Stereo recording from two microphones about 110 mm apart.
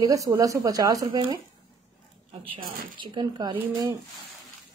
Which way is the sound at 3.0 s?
45° right (ahead or behind).